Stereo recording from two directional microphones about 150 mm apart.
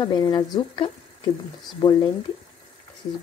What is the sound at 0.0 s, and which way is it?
Speech, 30° left (ahead or behind).